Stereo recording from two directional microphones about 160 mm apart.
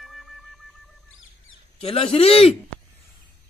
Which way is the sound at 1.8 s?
35° left (ahead or behind).